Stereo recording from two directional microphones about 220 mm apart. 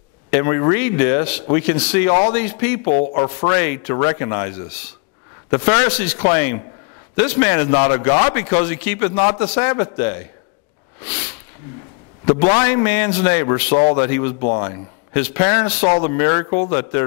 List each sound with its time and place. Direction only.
0.3 s a man's voice: 20° left (ahead or behind)
2.9 s a man's voice: 25° left (ahead or behind)
11.1 s a sound: 15° left (ahead or behind)
12.4 s a man's voice: 20° left (ahead or behind)
13.7 s speech: 25° left (ahead or behind)
15.1 s a man's voice: 15° left (ahead or behind)